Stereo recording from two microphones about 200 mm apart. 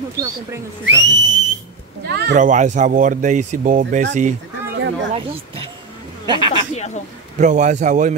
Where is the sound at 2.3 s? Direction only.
40° right (ahead or behind).